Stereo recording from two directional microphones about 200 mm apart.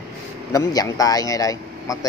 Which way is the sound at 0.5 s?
15° left (ahead or behind).